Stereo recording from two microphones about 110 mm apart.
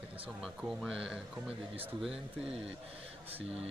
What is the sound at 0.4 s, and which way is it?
Speech, 5° right (ahead or behind).